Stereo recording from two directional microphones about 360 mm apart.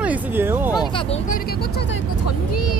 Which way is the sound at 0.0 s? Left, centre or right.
Centre.